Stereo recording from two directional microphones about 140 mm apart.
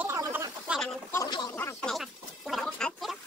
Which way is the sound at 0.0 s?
15° right (ahead or behind).